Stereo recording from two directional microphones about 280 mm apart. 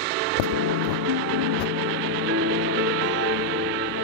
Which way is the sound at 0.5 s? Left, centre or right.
Right.